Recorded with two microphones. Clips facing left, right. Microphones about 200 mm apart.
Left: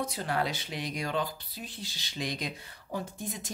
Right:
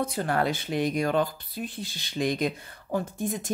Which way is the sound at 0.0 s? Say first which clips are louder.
Right 5 dB; 55° right (ahead or behind).